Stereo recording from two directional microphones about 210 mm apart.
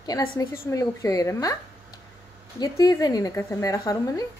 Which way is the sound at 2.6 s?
15° left (ahead or behind).